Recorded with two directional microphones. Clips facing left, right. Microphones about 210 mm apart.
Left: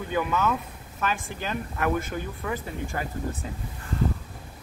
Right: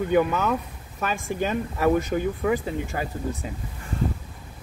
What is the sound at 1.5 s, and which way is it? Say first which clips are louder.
Speech: right 4 dB; 20° right (ahead or behind).